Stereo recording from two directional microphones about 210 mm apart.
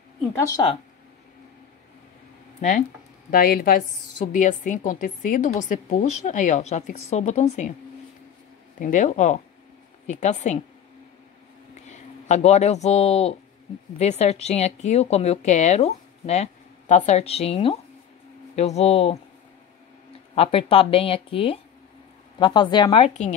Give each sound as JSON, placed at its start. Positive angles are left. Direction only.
{"t": 0.3, "sound": "speech", "side_deg": 20}
{"t": 3.3, "sound": "a woman's voice", "side_deg": 45}
{"t": 8.7, "sound": "a woman's voice", "side_deg": 40}
{"t": 11.7, "sound": "a woman's voice", "side_deg": 35}
{"t": 20.3, "sound": "speech", "side_deg": 25}